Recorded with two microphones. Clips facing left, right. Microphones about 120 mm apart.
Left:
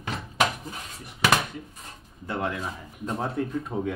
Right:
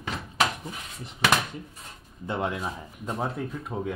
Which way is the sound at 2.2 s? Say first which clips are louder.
Right 1 dB; 20° right (ahead or behind).